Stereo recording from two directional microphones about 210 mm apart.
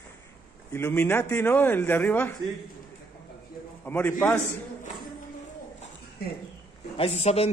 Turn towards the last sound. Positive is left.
turn(degrees=30)  # may be behind; listen again after turning